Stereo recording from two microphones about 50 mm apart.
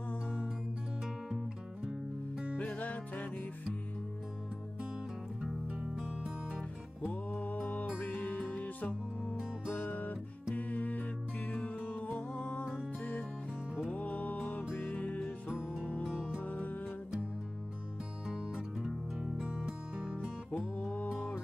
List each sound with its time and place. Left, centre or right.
2.5 s music: left
6.2 s music: centre
7.1 s music: left
13.8 s music: left
15.4 s music: centre
16.3 s music: left
18.3 s music: centre
20.5 s music: left